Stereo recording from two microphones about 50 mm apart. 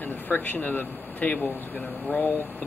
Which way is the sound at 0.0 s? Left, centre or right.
Left.